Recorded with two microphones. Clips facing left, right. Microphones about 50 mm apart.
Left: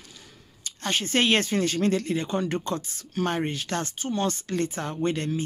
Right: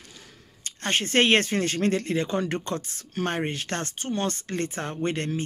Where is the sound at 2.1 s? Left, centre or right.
Right.